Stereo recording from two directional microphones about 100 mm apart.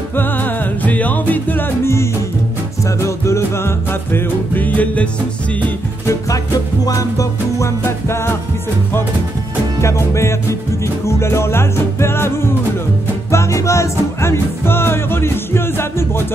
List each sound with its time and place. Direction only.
0.1 s music: 20° left (ahead or behind)
6.9 s music: 35° left (ahead or behind)
9.8 s music: 30° left (ahead or behind)